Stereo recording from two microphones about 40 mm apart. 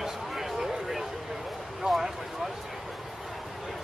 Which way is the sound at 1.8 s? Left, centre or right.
Centre.